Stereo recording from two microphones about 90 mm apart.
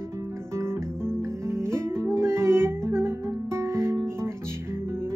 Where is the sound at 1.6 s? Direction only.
30° right (ahead or behind).